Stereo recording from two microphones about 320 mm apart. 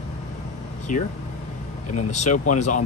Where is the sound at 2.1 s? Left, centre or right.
Left.